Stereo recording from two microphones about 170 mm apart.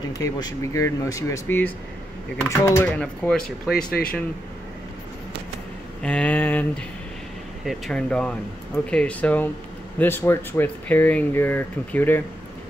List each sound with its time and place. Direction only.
0.1 s speech: 20° left (ahead or behind); by 3.7 s 5° left (ahead or behind)
6.0 s speech: 10° left (ahead or behind)